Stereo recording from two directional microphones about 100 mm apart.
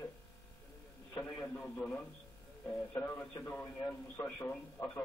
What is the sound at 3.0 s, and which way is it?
Speech, 20° left (ahead or behind).